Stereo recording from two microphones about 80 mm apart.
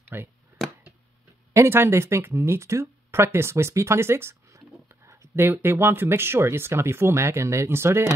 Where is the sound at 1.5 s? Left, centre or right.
Right.